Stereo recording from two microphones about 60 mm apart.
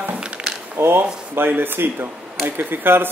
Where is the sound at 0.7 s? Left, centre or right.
Right.